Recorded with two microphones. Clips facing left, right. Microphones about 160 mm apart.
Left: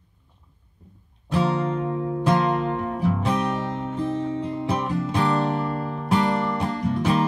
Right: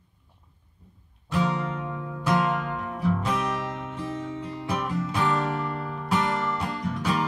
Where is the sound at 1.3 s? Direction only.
30° left (ahead or behind).